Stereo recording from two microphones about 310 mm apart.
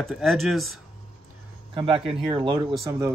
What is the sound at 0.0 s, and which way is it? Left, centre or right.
Speech, centre.